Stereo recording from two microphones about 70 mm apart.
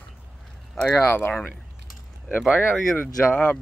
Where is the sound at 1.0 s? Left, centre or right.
Left.